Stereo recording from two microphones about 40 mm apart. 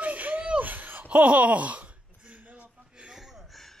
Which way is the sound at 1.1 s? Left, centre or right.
Right.